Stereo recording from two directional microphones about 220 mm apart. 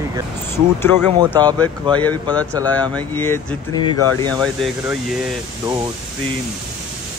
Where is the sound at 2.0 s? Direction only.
5° left (ahead or behind).